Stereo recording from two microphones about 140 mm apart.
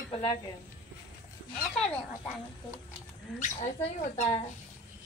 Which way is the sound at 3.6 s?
55° left (ahead or behind).